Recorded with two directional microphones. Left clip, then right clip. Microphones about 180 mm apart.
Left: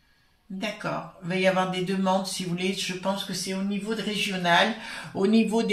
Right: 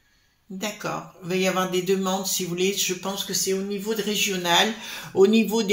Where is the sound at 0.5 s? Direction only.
45° right (ahead or behind).